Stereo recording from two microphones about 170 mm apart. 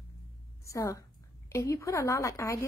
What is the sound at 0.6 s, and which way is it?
A woman's voice, 15° left (ahead or behind).